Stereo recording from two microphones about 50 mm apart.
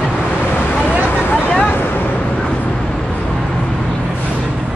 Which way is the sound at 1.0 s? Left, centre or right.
Left.